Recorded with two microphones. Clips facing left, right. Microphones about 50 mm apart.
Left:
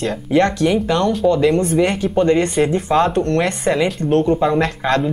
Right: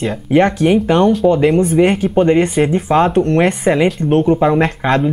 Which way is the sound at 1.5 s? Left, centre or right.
Centre.